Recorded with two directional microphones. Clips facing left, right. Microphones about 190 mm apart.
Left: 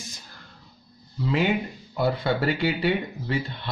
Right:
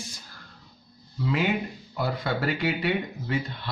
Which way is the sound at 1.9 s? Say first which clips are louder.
Left 5 dB; 25° left (ahead or behind).